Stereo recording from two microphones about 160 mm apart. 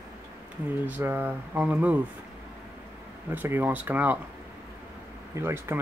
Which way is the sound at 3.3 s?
10° right (ahead or behind).